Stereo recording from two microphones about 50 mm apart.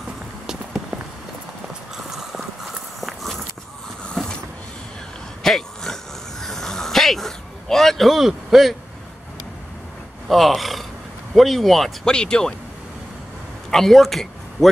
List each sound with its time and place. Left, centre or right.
2.0 s walk: centre
4.1 s vehicle: centre
5.4 s a sound: centre
10.2 s speech: centre
12.1 s speech: centre
13.7 s a man's voice: centre